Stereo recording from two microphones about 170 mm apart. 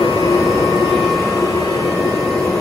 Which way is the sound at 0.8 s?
Centre (ahead or behind).